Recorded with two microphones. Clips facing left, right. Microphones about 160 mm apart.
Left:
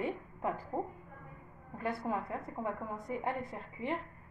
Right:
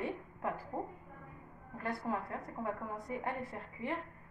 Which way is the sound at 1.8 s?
20° left (ahead or behind).